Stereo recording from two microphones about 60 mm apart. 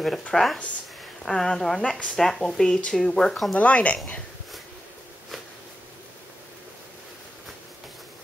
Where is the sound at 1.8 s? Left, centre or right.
Centre.